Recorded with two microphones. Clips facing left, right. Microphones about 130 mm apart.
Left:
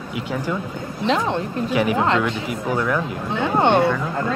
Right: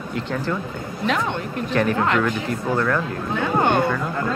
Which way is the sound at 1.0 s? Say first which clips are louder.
Left 3 dB; 30° left (ahead or behind).